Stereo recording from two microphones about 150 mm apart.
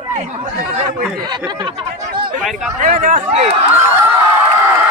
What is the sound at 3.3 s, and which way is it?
Speech, 45° right (ahead or behind).